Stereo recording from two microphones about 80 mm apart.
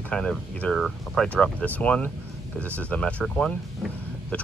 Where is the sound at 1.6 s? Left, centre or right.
Centre.